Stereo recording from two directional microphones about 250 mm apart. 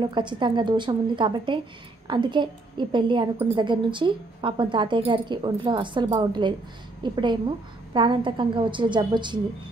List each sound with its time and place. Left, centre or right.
0.0 s a woman's voice: centre